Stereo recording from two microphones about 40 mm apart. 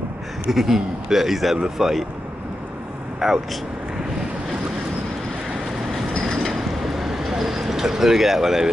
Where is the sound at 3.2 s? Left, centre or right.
Centre.